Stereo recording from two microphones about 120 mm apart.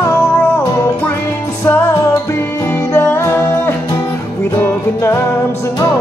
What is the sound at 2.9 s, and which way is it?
Music, 20° left (ahead or behind).